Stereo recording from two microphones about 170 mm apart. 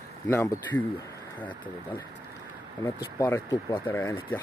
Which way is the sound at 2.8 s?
20° left (ahead or behind).